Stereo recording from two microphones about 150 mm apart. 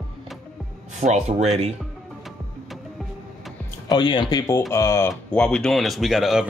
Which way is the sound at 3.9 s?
30° left (ahead or behind).